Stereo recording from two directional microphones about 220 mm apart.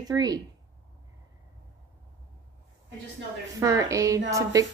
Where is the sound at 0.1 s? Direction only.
15° right (ahead or behind).